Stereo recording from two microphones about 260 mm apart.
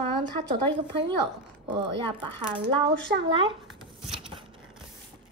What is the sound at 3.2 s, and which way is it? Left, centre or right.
Speech, centre.